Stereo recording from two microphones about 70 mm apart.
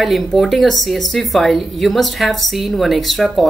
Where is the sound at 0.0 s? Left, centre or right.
Centre.